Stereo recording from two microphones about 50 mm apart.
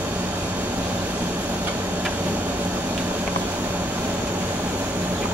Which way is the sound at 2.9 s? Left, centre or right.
Right.